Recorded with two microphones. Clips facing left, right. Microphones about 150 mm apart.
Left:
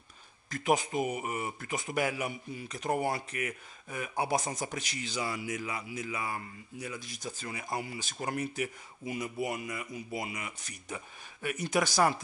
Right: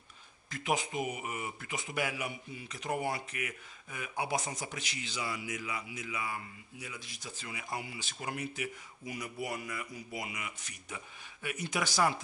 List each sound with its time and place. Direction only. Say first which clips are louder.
0.5 s speech: left 5 dB; 45° left (ahead or behind)
9.0 s speech: left 5 dB; 25° left (ahead or behind); by 12.2 s 45° left (ahead or behind)